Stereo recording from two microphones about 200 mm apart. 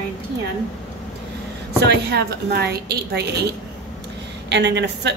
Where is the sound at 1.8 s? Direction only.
55° right (ahead or behind).